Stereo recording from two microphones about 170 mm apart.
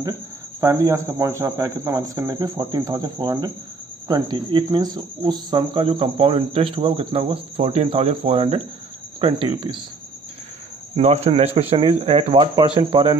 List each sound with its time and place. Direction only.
0.6 s speech: 20° right (ahead or behind)
11.0 s speech: 40° right (ahead or behind)